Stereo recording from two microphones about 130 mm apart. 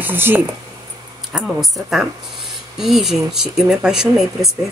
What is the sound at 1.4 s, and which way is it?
A woman's voice, centre (ahead or behind).